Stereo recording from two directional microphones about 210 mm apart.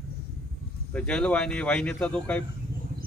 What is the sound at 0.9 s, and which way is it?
Speech, 5° left (ahead or behind).